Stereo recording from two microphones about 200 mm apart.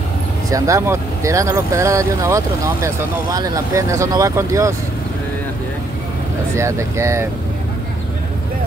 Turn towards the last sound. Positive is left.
turn(degrees=-15)  # may be behind; listen again after turning